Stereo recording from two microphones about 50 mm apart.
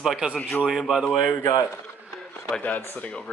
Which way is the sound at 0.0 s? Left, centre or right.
Centre.